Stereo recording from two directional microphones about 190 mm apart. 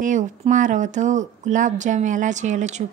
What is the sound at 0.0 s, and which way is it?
A woman's voice, 40° right (ahead or behind).